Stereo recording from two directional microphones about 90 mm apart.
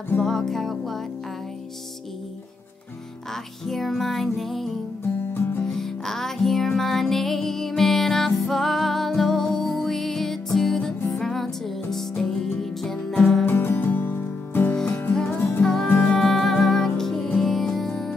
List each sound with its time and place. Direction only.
0.2 s music: 5° left (ahead or behind)
3.6 s music: centre (ahead or behind)
13.5 s music: 25° left (ahead or behind)
15.6 s music: 5° left (ahead or behind)